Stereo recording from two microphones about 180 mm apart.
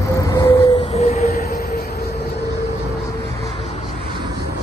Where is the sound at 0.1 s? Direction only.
20° left (ahead or behind); by 2.1 s 55° left (ahead or behind).